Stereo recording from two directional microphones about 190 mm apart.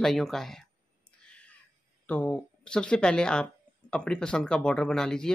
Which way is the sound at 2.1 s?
5° left (ahead or behind).